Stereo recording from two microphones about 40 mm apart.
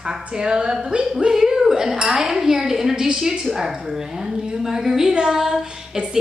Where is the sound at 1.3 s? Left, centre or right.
Centre.